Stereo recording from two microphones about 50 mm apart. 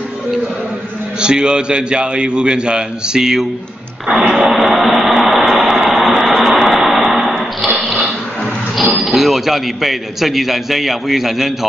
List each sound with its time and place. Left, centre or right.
1.2 s a man's voice: centre
4.4 s a sound: centre
8.9 s a man's voice: centre